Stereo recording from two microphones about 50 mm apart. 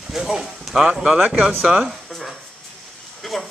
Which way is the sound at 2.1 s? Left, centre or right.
Centre.